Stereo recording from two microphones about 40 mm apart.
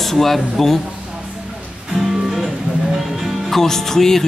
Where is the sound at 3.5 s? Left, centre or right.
Centre.